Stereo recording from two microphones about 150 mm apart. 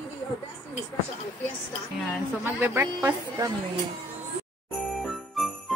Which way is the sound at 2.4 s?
15° right (ahead or behind).